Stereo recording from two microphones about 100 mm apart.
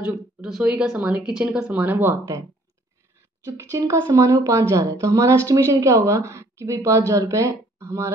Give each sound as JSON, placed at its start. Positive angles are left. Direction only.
{"t": 0.5, "sound": "speech", "side_deg": -5}
{"t": 3.7, "sound": "a woman's voice", "side_deg": -30}